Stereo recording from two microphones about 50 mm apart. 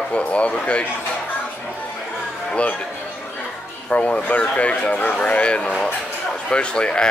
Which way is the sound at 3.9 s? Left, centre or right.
Left.